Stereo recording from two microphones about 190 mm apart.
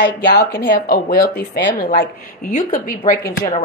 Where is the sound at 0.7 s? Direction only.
50° left (ahead or behind).